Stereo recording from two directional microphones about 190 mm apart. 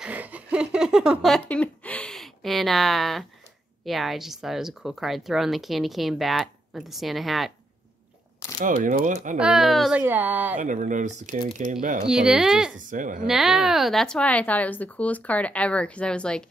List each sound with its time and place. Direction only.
0.0 s a sound: 10° right (ahead or behind)
3.8 s speech: centre (ahead or behind)
8.5 s speech: 45° right (ahead or behind)
9.4 s a child's voice: centre (ahead or behind)
10.6 s speech: 40° right (ahead or behind)
12.1 s speech: 5° right (ahead or behind)
12.7 s speech: 45° right (ahead or behind)
13.3 s speech: centre (ahead or behind)